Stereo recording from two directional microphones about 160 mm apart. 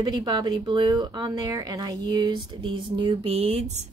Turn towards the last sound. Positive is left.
turn(degrees=-45)  # may be behind; listen again after turning